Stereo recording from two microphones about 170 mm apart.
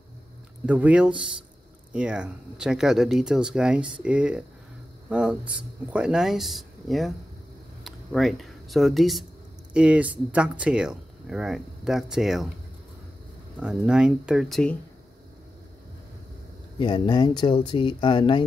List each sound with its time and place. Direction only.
0.7 s speech: 10° right (ahead or behind)
13.6 s speech: 5° right (ahead or behind)
16.7 s speech: 25° left (ahead or behind)